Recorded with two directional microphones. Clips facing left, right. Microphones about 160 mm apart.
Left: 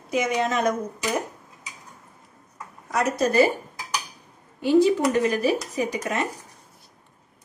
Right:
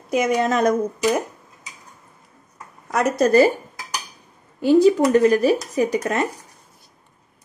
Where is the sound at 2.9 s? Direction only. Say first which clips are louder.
Right 5 dB; 45° right (ahead or behind).